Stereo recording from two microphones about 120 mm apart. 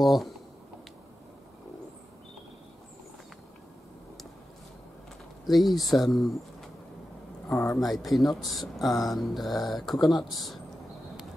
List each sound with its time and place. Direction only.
0.0 s speech: centre (ahead or behind)
5.4 s speech: centre (ahead or behind)
7.5 s speech: 25° left (ahead or behind)
7.8 s speech: centre (ahead or behind)